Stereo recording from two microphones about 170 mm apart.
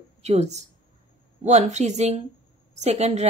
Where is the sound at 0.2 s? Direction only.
40° right (ahead or behind).